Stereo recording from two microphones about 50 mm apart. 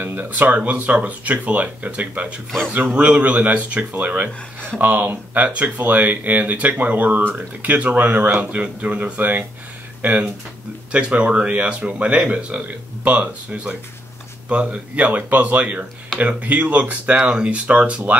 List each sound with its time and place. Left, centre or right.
0.0 s speech: right
0.6 s speech: right
5.4 s speech: right